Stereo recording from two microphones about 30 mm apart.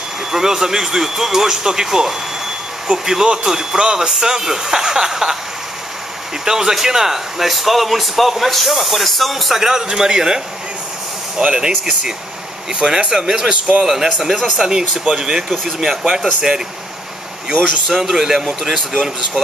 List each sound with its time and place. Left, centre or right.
0.3 s speech: centre
6.4 s speech: centre
9.6 s speech: centre
11.4 s a man's voice: right
12.7 s speech: right
13.5 s a man's voice: right
13.8 s speech: centre
17.8 s speech: centre